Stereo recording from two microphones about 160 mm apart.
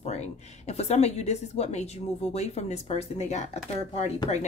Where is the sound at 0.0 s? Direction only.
45° left (ahead or behind).